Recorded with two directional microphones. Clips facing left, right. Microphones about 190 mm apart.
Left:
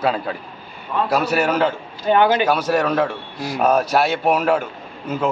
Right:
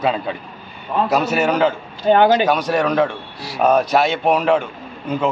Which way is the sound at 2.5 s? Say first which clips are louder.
Right 1 dB; 5° left (ahead or behind).